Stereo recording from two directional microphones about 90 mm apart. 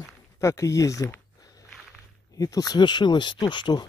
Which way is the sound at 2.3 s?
40° left (ahead or behind).